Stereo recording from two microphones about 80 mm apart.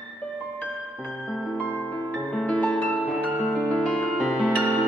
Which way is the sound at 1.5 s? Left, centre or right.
Left.